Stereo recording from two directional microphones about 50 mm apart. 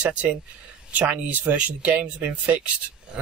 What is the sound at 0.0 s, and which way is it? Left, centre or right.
Speech, right.